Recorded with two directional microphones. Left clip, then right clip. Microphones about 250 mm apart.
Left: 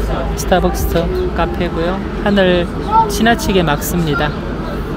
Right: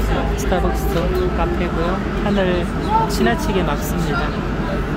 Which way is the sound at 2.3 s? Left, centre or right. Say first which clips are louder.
Left 8 dB; centre.